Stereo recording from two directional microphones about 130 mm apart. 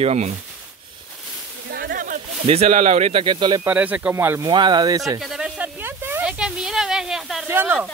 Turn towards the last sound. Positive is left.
turn(degrees=-15)  # may be behind; listen again after turning